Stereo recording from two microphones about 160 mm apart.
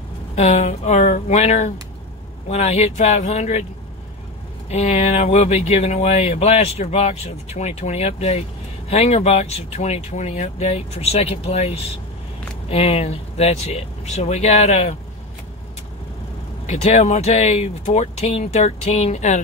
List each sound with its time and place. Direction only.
0.4 s speech: 45° left (ahead or behind)
4.6 s speech: 40° left (ahead or behind)
16.6 s speech: 40° left (ahead or behind)